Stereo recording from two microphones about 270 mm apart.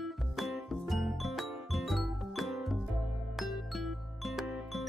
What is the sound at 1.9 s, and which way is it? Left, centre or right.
Music, centre.